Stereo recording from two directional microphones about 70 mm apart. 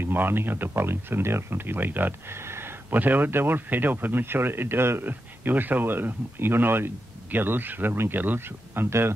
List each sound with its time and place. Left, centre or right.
0.0 s speech: right